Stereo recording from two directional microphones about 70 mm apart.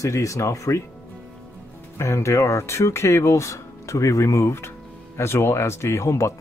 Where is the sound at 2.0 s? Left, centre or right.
Left.